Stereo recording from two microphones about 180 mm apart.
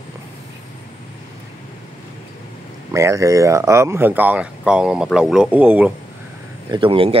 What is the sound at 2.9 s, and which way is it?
Speech, 15° right (ahead or behind).